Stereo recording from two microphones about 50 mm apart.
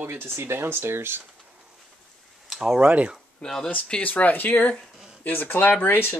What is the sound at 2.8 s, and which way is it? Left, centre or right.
Speech, right.